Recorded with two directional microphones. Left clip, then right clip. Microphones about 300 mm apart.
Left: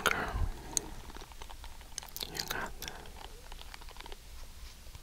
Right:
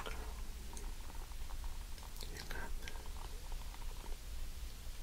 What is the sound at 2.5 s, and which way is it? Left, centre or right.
Chewing, left.